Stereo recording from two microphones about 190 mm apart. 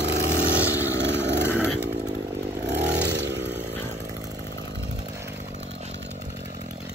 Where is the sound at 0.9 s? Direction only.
70° right (ahead or behind).